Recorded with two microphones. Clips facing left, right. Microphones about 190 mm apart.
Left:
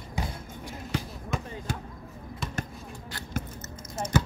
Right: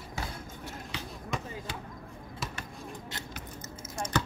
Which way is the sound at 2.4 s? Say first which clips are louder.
Left 2 dB; 5° right (ahead or behind).